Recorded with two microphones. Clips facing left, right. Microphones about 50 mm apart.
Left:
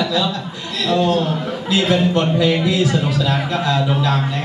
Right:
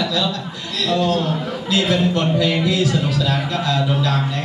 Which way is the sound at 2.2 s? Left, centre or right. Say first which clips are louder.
Left 2 dB; centre.